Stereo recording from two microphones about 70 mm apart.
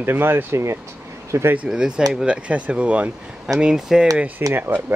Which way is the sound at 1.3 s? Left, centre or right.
Right.